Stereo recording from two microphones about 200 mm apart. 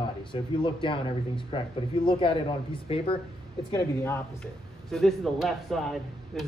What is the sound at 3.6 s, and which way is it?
Speech, 15° left (ahead or behind).